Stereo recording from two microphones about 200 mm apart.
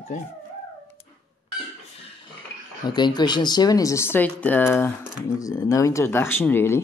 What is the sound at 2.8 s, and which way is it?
Speech, 20° left (ahead or behind).